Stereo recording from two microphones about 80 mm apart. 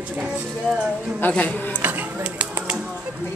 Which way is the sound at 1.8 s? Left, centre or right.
Right.